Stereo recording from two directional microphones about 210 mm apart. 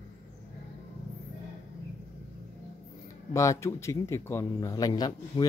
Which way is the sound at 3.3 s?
15° left (ahead or behind).